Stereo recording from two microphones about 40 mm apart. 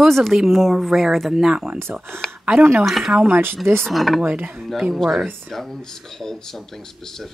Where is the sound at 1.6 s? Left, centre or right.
Right.